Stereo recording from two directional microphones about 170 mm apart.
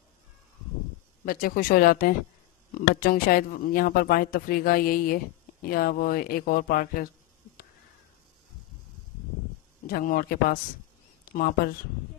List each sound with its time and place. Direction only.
1.2 s speech: 60° left (ahead or behind)
9.8 s speech: 60° left (ahead or behind)